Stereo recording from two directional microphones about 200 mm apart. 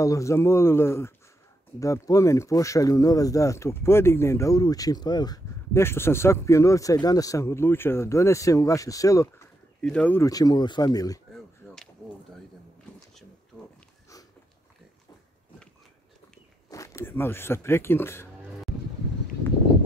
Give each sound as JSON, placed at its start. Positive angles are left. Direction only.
{"t": 0.0, "sound": "speech", "side_deg": 15}
{"t": 16.7, "sound": "speech", "side_deg": 15}